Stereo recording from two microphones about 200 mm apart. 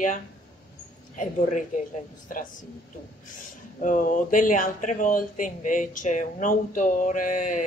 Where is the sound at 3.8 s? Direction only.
40° left (ahead or behind).